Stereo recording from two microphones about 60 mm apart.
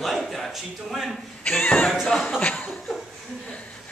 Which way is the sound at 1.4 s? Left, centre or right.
Left.